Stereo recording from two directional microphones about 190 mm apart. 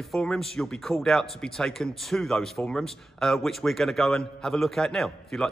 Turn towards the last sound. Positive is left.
turn(degrees=0)  # may be behind; listen again after turning